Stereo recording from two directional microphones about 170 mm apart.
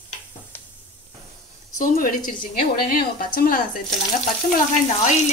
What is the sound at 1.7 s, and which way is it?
A woman's voice, 55° left (ahead or behind).